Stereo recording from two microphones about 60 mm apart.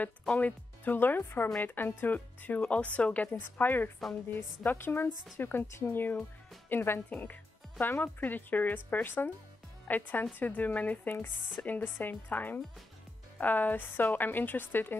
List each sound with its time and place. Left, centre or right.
0.4 s a woman's voice: left
7.1 s a woman's voice: left